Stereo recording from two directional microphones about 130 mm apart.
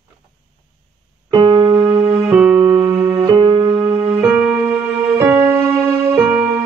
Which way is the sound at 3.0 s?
30° right (ahead or behind).